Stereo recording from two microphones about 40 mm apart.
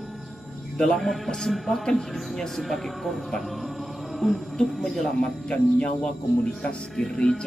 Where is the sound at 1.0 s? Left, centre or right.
Centre.